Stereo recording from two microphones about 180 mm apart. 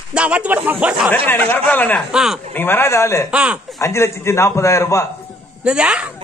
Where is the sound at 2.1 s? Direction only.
Centre (ahead or behind).